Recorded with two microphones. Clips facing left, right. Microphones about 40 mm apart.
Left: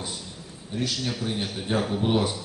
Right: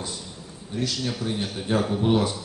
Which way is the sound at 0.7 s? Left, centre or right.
Centre.